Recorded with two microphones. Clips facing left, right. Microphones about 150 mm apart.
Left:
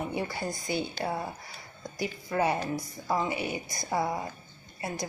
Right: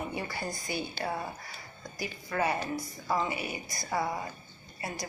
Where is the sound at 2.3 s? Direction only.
10° left (ahead or behind).